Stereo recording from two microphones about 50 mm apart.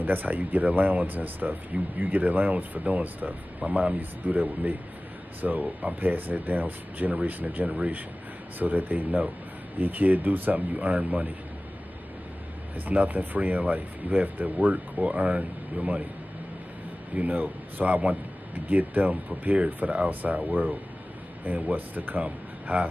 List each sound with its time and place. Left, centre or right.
0.0 s speech: right
12.7 s speech: right
17.1 s speech: right